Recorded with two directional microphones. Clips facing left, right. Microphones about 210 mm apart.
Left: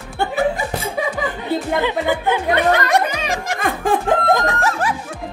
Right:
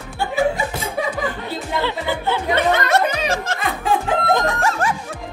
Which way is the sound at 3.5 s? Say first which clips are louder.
Left 2 dB; 50° left (ahead or behind).